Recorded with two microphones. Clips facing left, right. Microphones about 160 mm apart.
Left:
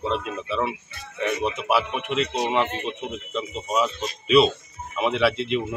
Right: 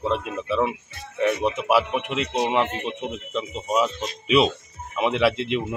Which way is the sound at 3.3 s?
10° right (ahead or behind).